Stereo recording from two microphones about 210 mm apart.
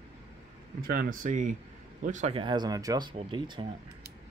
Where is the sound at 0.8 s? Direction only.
40° right (ahead or behind); by 3.6 s 20° right (ahead or behind).